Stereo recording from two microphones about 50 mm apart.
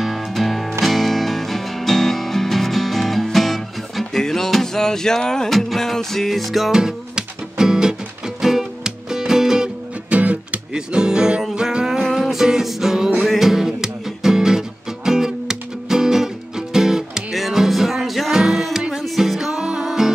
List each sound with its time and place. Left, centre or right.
0.0 s music: centre
6.7 s music: centre
10.0 s music: right
10.7 s music: centre
18.3 s music: centre